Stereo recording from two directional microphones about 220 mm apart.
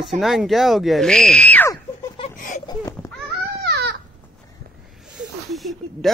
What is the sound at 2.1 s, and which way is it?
Laughter, 30° left (ahead or behind).